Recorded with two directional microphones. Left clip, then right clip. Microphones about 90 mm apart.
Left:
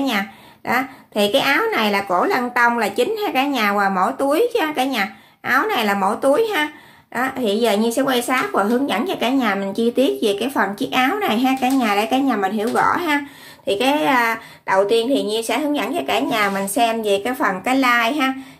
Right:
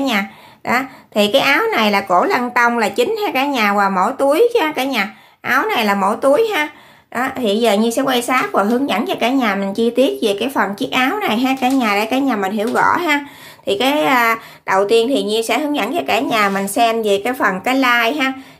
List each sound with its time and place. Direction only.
0.7 s a woman's voice: 35° right (ahead or behind)